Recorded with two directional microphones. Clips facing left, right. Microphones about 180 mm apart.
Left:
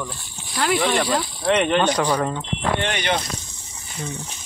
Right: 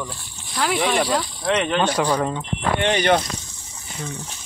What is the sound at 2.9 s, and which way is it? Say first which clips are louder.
Speech: right 6 dB; 40° right (ahead or behind).